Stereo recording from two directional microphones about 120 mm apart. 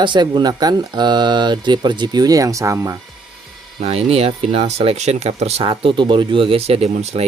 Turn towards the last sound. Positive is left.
turn(degrees=-60)  # may be behind; listen again after turning